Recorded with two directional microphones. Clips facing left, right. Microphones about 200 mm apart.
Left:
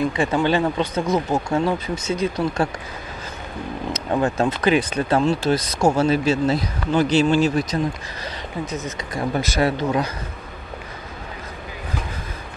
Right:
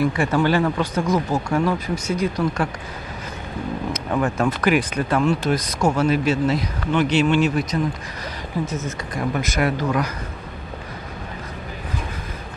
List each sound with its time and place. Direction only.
0.0 s speech: 20° left (ahead or behind)
4.1 s speech: 25° left (ahead or behind)
8.6 s speech: 15° left (ahead or behind)
9.3 s speech: 30° left (ahead or behind)